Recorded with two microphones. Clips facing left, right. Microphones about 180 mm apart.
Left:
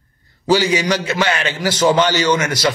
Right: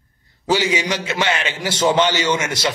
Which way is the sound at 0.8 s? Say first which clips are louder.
Left 4 dB; 20° right (ahead or behind).